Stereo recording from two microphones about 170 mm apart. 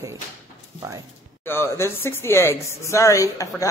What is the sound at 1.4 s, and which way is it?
Speech, 15° left (ahead or behind).